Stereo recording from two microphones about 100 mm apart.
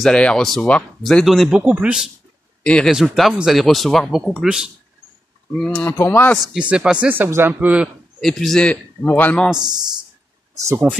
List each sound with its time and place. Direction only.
0.0 s speech: 10° left (ahead or behind)
1.2 s speech: centre (ahead or behind)
2.6 s speech: 10° left (ahead or behind)
2.9 s speech: 5° right (ahead or behind)
5.6 s speech: 10° left (ahead or behind)
6.6 s speech: 10° right (ahead or behind)
8.2 s speech: 5° left (ahead or behind)
9.0 s speech: 20° left (ahead or behind)
9.6 s speech: 45° right (ahead or behind)
10.9 s speech: 5° right (ahead or behind)